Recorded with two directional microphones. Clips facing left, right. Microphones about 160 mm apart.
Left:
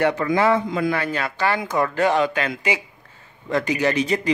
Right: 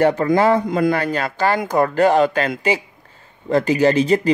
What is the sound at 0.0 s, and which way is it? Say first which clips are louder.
Speech: right 4 dB; 35° right (ahead or behind).